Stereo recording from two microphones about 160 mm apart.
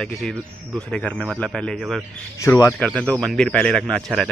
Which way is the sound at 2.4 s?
20° left (ahead or behind).